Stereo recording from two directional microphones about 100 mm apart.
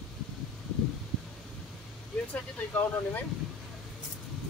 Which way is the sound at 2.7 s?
20° left (ahead or behind).